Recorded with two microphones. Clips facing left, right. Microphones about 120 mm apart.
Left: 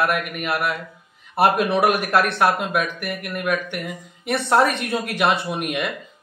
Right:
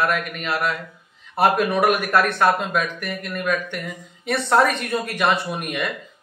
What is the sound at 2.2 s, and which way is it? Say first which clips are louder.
Speech: right 1 dB; 15° left (ahead or behind).